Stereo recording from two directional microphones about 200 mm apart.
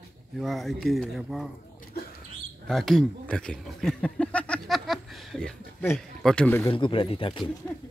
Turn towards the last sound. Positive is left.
turn(degrees=25)  # may be behind; listen again after turning